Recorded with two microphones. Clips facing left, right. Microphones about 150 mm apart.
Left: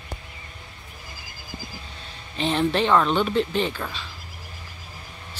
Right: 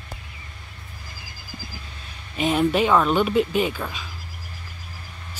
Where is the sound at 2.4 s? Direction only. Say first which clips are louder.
Right 2 dB; 10° right (ahead or behind).